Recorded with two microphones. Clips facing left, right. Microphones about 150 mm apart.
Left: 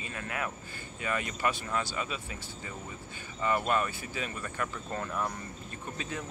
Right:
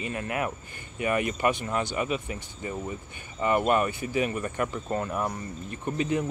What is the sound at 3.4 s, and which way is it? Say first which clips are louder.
Speech: right 5 dB; 20° right (ahead or behind).